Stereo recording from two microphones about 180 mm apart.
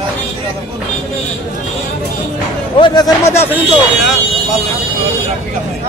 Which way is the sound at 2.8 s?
20° left (ahead or behind).